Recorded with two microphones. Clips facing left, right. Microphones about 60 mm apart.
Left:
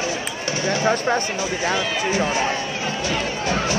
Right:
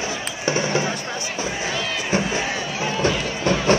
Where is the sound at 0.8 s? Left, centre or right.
Left.